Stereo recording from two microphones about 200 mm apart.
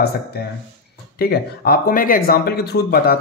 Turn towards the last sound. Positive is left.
turn(degrees=50)  # may be behind; listen again after turning